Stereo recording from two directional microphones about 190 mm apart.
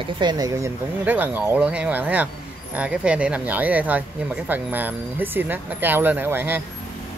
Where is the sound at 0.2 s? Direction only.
20° right (ahead or behind).